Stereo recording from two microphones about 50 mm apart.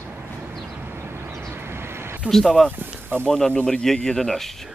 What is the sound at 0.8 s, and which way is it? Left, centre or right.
Vehicle, right.